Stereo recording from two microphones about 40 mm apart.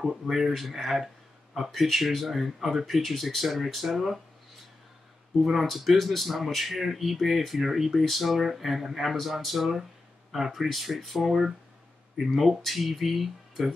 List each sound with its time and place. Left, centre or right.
0.1 s speech: centre
5.4 s speech: centre